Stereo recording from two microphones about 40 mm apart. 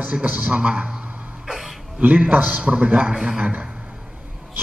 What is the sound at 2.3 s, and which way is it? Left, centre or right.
A man's voice, right.